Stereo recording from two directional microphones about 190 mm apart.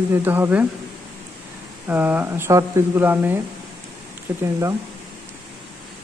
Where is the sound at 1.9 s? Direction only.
10° right (ahead or behind).